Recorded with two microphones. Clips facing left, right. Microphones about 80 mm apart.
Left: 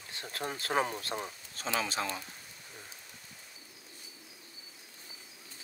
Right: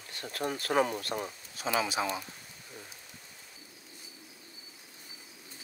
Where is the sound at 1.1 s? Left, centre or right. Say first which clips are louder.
Right 2 dB; centre.